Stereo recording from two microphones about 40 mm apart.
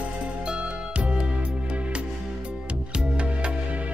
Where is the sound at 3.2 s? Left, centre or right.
Right.